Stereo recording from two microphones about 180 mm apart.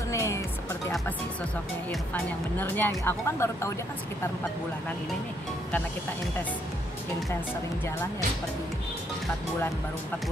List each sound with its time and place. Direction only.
0.1 s music: 15° left (ahead or behind)
1.9 s speech: 10° left (ahead or behind)